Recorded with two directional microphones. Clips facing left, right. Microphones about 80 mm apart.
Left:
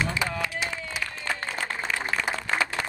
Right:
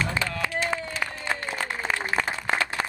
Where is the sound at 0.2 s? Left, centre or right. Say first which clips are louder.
Right 1 dB; centre.